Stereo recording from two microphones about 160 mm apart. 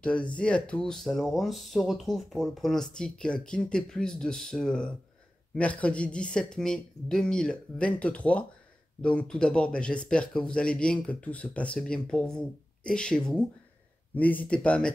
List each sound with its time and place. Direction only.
0.0 s speech: 5° left (ahead or behind)